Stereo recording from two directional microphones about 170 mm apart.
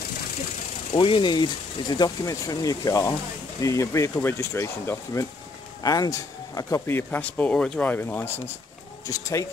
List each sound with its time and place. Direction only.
0.9 s speech: 30° left (ahead or behind)